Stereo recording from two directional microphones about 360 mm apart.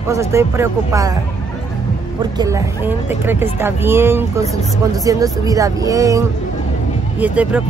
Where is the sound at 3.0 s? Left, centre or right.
Centre.